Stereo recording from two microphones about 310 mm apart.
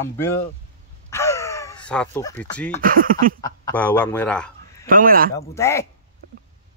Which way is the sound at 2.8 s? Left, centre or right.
Right.